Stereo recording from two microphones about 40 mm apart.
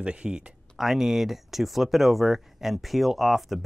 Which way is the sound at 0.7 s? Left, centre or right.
Centre.